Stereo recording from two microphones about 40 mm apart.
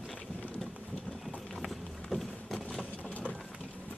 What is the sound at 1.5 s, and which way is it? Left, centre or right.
Run, centre.